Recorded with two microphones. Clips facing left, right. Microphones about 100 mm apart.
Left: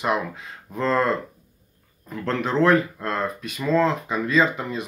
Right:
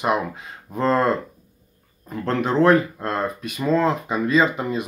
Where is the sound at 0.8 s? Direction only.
35° right (ahead or behind).